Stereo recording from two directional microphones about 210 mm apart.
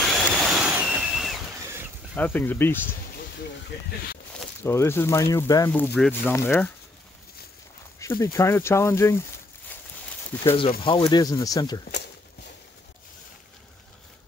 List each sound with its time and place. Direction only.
0.2 s a sound: centre (ahead or behind)
2.1 s speech: 10° left (ahead or behind)
4.6 s speech: 10° left (ahead or behind)
8.0 s speech: 15° left (ahead or behind)
10.5 s speech: 25° left (ahead or behind)